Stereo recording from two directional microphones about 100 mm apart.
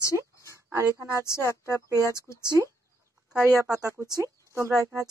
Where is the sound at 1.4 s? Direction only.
25° left (ahead or behind).